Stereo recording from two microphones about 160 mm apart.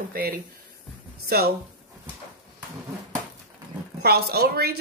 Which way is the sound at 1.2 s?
80° right.